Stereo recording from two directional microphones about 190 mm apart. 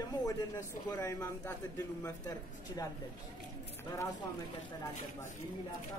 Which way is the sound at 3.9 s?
20° left (ahead or behind).